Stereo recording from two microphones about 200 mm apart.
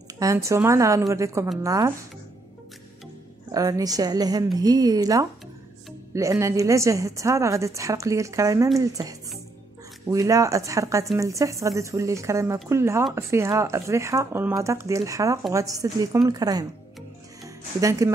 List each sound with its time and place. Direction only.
0.2 s speech: 15° right (ahead or behind)
3.5 s speech: 15° right (ahead or behind)
17.4 s music: 15° right (ahead or behind)